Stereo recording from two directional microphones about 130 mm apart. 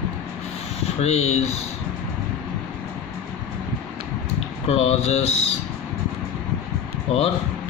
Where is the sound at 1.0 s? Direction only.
55° left (ahead or behind).